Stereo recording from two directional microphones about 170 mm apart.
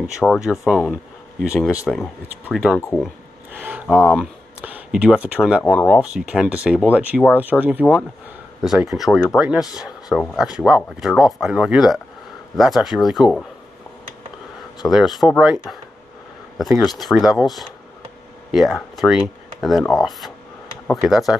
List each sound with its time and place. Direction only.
0.0 s speech: centre (ahead or behind)
5.6 s speech: 15° left (ahead or behind)
5.9 s speech: 5° right (ahead or behind)
8.9 s speech: centre (ahead or behind)
14.9 s speech: centre (ahead or behind)